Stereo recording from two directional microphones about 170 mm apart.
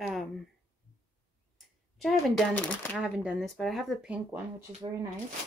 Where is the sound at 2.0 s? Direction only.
Centre (ahead or behind).